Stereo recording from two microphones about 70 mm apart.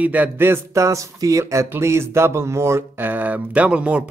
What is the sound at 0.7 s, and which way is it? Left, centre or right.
Speech, right.